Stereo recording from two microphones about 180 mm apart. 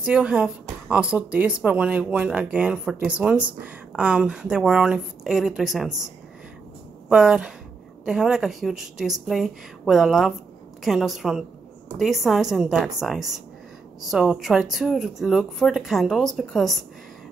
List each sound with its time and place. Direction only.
0.0 s speech: 5° right (ahead or behind)
7.1 s speech: 5° right (ahead or behind)